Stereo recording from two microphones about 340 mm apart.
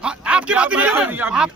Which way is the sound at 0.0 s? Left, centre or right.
Centre.